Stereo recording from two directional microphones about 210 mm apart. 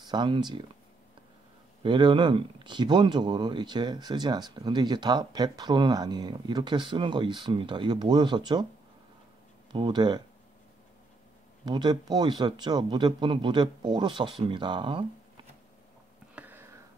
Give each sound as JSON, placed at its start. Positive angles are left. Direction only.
{"t": 0.0, "sound": "speech", "side_deg": -20}
{"t": 1.8, "sound": "speech", "side_deg": -20}
{"t": 9.7, "sound": "speech", "side_deg": -20}
{"t": 11.6, "sound": "speech", "side_deg": -20}
{"t": 16.3, "sound": "a sound", "side_deg": -10}